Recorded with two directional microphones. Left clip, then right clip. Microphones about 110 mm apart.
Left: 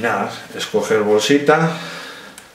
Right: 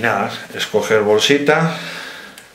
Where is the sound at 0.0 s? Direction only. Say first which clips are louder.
Right 2 dB; 20° right (ahead or behind).